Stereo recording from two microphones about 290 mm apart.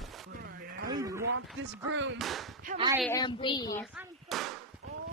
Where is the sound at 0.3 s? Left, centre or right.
Right.